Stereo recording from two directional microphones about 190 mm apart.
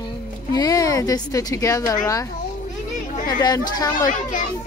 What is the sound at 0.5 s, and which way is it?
A woman's voice, 20° left (ahead or behind).